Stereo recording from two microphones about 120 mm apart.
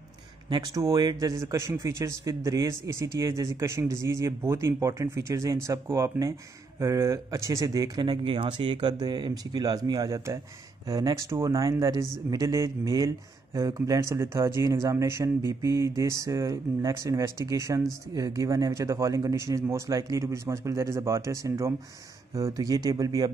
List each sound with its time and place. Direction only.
0.5 s a man's voice: 30° right (ahead or behind)